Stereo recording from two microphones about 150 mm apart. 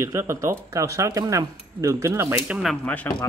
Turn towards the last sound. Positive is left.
turn(degrees=10)  # may be behind; listen again after turning